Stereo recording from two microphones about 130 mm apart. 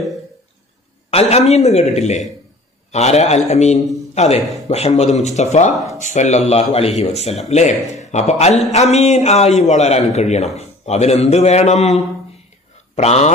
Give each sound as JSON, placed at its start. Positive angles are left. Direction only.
{"t": 1.1, "sound": "a man's voice", "side_deg": 55}